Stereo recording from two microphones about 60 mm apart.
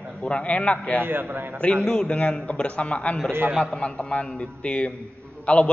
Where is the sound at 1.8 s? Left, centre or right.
Centre.